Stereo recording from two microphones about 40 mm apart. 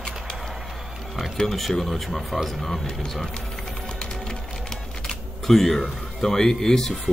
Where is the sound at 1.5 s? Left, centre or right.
Centre.